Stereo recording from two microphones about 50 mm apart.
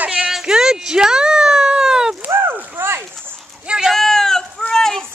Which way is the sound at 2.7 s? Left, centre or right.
Right.